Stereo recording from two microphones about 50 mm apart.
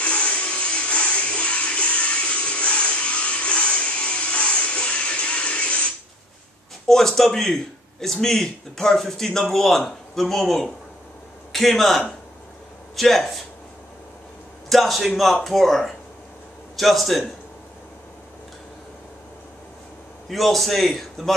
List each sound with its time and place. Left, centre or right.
0.0 s music: left
6.9 s a man's voice: centre
14.7 s a man's voice: centre
20.2 s a man's voice: centre